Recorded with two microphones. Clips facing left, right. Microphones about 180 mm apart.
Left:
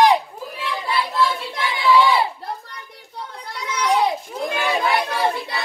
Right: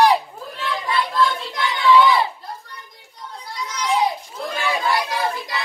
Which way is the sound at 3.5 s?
60° left (ahead or behind).